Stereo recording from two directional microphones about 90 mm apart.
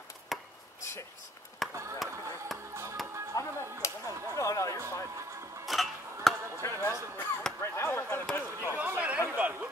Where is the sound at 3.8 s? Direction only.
40° left (ahead or behind).